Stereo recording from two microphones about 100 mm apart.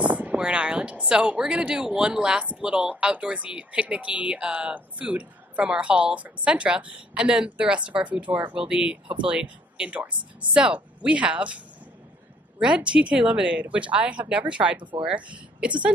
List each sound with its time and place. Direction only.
0.0 s speech: 15° right (ahead or behind)
14.8 s speech: 55° right (ahead or behind)
15.0 s speech: 15° right (ahead or behind)